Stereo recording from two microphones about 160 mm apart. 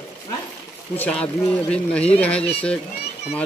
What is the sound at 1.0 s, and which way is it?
Speech, 5° left (ahead or behind).